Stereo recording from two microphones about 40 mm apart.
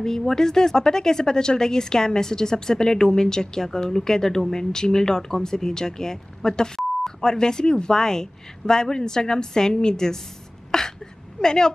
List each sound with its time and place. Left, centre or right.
0.0 s speech: centre